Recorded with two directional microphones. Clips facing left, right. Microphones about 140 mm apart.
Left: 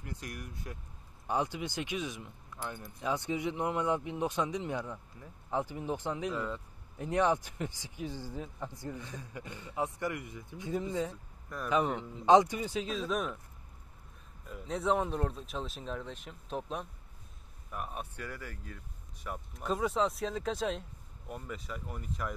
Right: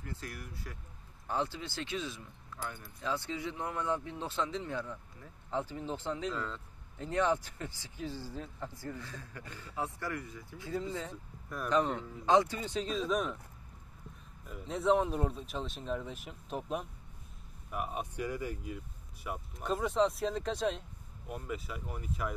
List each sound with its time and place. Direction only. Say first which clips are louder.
0.0 s speech: left 1 dB; 15° left (ahead or behind)
11.1 s speech: even; 5° left (ahead or behind)
11.8 s speech: left 1 dB; 15° left (ahead or behind)
12.7 s speech: right 2 dB; centre (ahead or behind)
14.5 s speech: right 2 dB; centre (ahead or behind)
19.2 s speech: even; 5° right (ahead or behind)